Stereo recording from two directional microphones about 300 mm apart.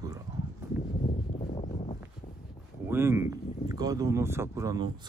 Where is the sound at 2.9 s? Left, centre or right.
Centre.